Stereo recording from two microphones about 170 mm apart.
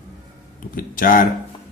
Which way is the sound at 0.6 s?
55° left (ahead or behind).